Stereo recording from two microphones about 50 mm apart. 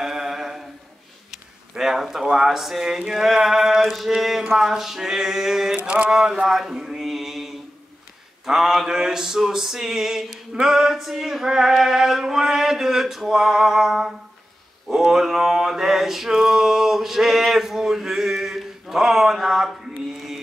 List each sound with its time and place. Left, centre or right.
0.0 s a sound: centre
1.8 s male singing: centre
5.8 s mantra: right; by 7.5 s centre
8.5 s male singing: centre